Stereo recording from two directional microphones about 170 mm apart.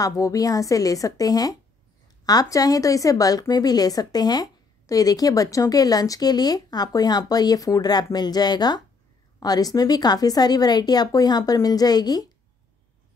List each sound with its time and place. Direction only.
0.0 s a woman's voice: 20° left (ahead or behind)